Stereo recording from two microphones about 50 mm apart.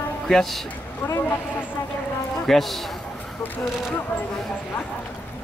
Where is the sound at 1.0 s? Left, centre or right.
Left.